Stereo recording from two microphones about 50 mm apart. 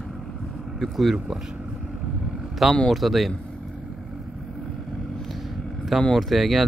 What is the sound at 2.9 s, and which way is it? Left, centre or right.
Speech, centre.